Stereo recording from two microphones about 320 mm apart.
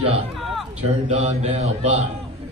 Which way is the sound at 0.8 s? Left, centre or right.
Centre.